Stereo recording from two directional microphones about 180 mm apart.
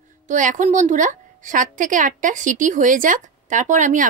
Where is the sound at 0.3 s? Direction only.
45° right (ahead or behind).